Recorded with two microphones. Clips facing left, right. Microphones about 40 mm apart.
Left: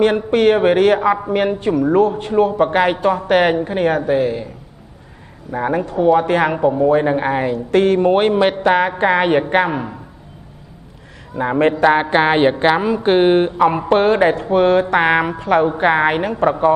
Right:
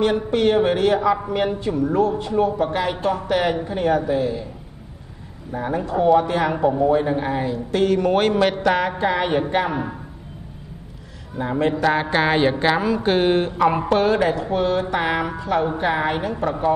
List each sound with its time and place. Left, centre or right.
0.0 s a woman's voice: left
5.5 s a woman's voice: left
8.0 s a woman's voice: left
8.9 s a woman's voice: left
11.3 s a woman's voice: left
11.8 s a woman's voice: left
13.9 s a woman's voice: left